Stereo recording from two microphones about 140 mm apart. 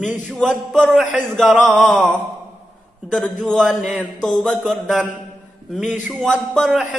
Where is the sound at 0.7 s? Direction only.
5° left (ahead or behind).